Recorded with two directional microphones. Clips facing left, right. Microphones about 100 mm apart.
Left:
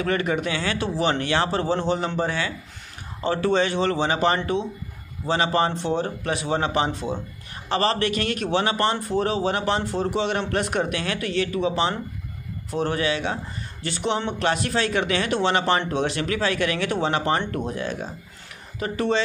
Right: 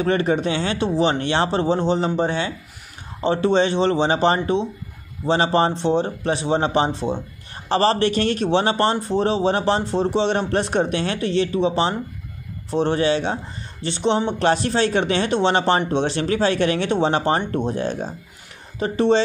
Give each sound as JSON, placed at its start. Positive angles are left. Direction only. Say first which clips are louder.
{"t": 0.0, "sound": "speech", "louder": "right 4 dB", "side_deg": -30}